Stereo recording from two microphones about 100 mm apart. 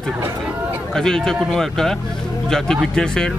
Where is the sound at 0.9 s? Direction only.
5° left (ahead or behind).